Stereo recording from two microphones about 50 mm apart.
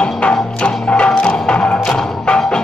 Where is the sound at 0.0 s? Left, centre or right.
Centre.